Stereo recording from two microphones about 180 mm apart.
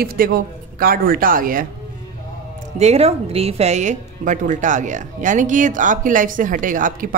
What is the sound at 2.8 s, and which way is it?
A woman's voice, 35° right (ahead or behind).